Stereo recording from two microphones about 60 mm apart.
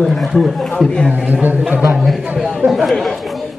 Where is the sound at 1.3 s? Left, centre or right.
Right.